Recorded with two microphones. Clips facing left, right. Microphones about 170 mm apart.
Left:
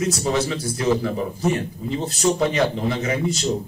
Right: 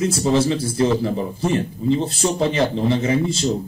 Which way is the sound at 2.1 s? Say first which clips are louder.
Even; 30° right (ahead or behind).